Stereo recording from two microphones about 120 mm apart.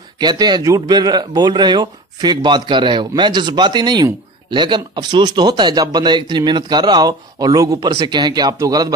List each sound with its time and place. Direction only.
0.2 s speech: 35° right (ahead or behind)